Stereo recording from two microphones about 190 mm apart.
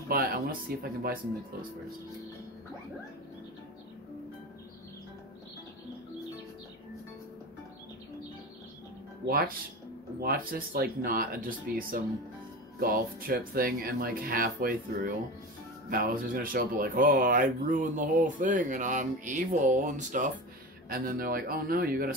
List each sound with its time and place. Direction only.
0.1 s speech: 50° right (ahead or behind)
9.2 s speech: 75° right (ahead or behind)
10.2 s speech: 50° right (ahead or behind)